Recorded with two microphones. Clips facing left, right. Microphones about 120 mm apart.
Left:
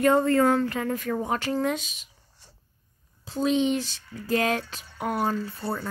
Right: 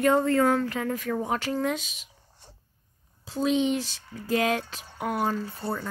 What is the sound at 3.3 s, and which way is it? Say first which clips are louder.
A woman's voice: left 1 dB; centre (ahead or behind).